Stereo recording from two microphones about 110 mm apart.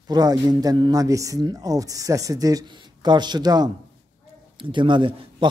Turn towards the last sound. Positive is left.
turn(degrees=-45)  # may be behind; listen again after turning